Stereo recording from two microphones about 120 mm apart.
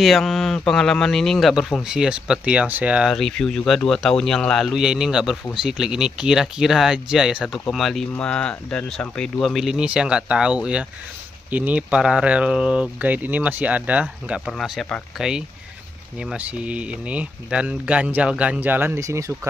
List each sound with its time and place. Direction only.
0.0 s speech: centre (ahead or behind)
3.1 s speech: 5° left (ahead or behind); by 18.9 s 15° right (ahead or behind)
18.9 s speech: 25° right (ahead or behind)